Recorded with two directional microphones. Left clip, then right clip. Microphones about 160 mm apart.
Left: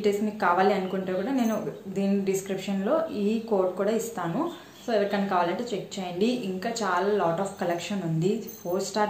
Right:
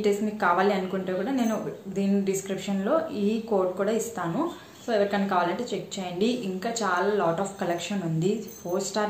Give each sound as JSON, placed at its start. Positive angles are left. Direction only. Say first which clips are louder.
{"t": 0.0, "sound": "a woman's voice", "louder": "even", "side_deg": 0}